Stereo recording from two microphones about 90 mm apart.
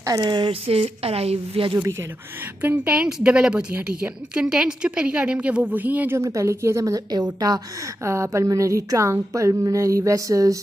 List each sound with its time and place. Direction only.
0.0 s speech: 45° right (ahead or behind)
0.5 s speech: 90° right
2.6 s a woman's voice: 15° right (ahead or behind)
6.1 s a woman's voice: 35° right (ahead or behind)
8.0 s a woman's voice: 30° right (ahead or behind)